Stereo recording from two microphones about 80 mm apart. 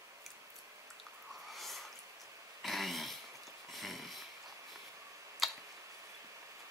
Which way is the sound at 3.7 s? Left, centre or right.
Centre.